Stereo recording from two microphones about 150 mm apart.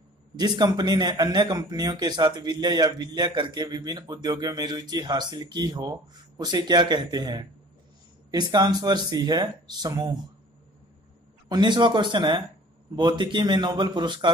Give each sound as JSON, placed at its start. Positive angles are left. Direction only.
{"t": 0.4, "sound": "a man's voice", "side_deg": -25}
{"t": 11.4, "sound": "a man's voice", "side_deg": -30}